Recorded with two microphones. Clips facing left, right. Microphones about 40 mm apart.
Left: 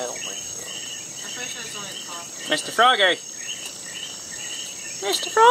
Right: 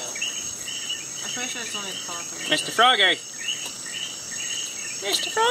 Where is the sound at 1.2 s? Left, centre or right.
Right.